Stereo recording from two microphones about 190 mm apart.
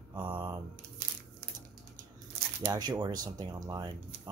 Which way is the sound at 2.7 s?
20° right (ahead or behind).